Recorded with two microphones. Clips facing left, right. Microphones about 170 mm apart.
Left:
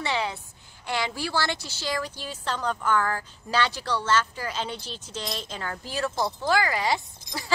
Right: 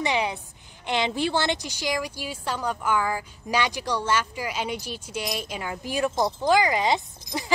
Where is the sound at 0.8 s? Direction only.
20° right (ahead or behind).